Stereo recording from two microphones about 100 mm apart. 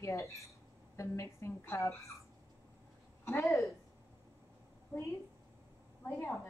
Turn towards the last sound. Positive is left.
turn(degrees=25)  # may be behind; listen again after turning